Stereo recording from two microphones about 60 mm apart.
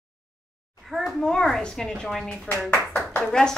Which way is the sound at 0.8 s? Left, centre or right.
Centre.